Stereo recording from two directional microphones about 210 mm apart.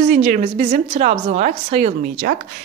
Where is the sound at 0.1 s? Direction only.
35° right (ahead or behind).